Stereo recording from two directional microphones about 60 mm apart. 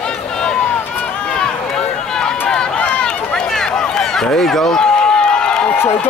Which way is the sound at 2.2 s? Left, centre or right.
Centre.